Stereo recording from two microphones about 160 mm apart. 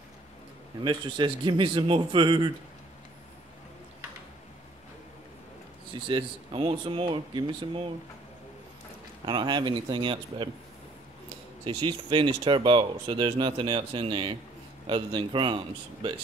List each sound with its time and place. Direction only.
0.8 s speech: 30° right (ahead or behind)
6.0 s speech: 30° right (ahead or behind)
9.2 s speech: 30° right (ahead or behind)